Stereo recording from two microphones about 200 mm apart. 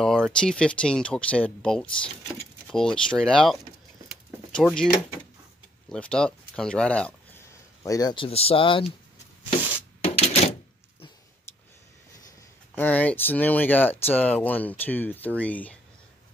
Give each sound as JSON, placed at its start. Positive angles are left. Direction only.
{"t": 0.0, "sound": "speech", "side_deg": 5}
{"t": 4.1, "sound": "door", "side_deg": 5}
{"t": 5.9, "sound": "speech", "side_deg": 5}
{"t": 10.0, "sound": "typewriter", "side_deg": 30}
{"t": 12.7, "sound": "speech", "side_deg": 10}